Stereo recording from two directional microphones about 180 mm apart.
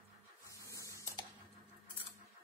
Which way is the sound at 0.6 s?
15° left (ahead or behind).